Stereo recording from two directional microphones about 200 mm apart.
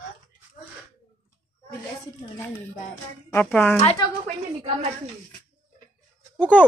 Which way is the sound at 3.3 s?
10° left (ahead or behind).